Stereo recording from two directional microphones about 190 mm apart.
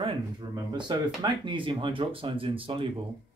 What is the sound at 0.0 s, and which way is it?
Speech, 25° right (ahead or behind).